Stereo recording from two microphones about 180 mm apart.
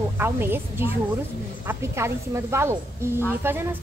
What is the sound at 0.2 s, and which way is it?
A woman's voice, 10° right (ahead or behind).